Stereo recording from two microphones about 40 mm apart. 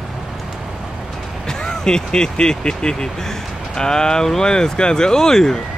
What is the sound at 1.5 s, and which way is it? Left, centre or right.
Speech, centre.